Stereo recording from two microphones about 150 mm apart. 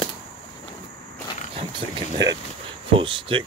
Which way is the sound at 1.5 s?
30° right (ahead or behind).